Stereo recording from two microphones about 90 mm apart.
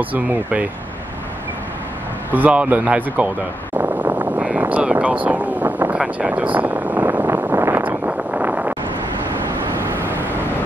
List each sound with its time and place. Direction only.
0.0 s speech: 15° right (ahead or behind)
2.3 s speech: 15° right (ahead or behind)
3.7 s a sound: 20° right (ahead or behind)
7.8 s vehicle: 15° right (ahead or behind)